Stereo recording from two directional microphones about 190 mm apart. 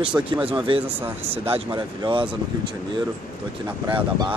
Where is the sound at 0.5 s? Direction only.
30° right (ahead or behind).